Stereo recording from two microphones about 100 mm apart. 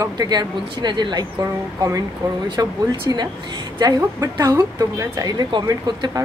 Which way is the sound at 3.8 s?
40° right (ahead or behind).